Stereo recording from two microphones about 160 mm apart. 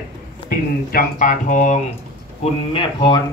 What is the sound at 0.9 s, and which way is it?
Speech, 55° left (ahead or behind).